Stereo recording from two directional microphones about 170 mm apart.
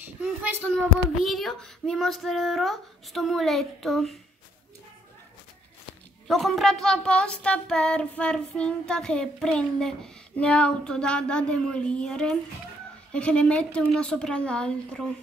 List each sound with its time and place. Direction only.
0.0 s a sound: 10° right (ahead or behind)
0.6 s a child's voice: 5° left (ahead or behind)
6.2 s a child's voice: centre (ahead or behind)